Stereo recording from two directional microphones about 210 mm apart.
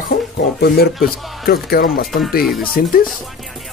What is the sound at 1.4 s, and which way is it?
Speech, 45° left (ahead or behind).